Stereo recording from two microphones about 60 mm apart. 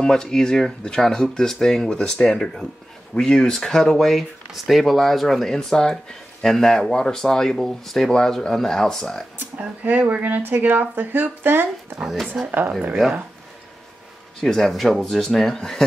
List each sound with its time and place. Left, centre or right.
0.0 s speech: centre
9.6 s speech: right
12.0 s speech: centre
12.4 s speech: right
14.4 s speech: centre